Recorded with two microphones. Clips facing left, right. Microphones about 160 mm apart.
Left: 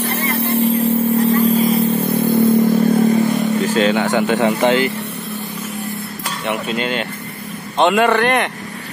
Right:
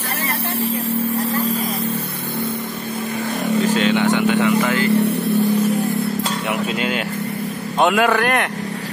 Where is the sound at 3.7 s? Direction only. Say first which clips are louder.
Left 1 dB; 40° left (ahead or behind).